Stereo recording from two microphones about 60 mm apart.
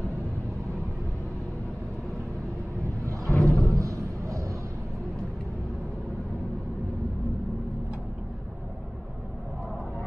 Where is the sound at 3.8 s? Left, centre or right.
Right.